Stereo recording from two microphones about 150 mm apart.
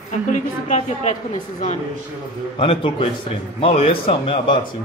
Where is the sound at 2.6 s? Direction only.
35° left (ahead or behind).